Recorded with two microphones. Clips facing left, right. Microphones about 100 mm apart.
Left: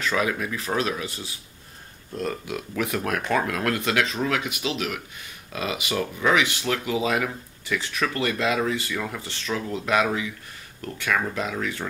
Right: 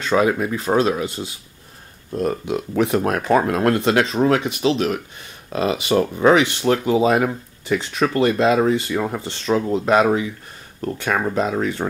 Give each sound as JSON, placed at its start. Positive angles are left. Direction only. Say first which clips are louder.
{"t": 0.0, "sound": "speech", "louder": "right 7 dB", "side_deg": -30}